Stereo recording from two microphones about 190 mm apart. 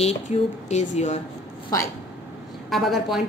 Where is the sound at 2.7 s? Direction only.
Centre (ahead or behind).